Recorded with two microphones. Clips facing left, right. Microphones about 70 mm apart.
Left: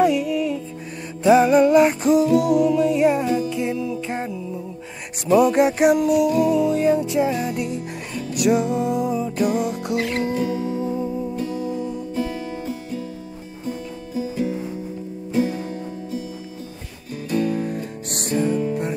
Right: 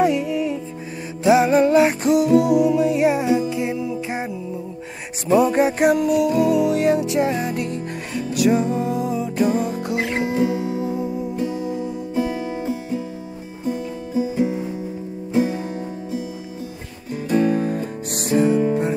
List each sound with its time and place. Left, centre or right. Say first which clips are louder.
0.0 s music: even; centre
10.0 s music: right 2 dB; centre
11.3 s music: right 1 dB; centre
17.6 s music: right 4 dB; centre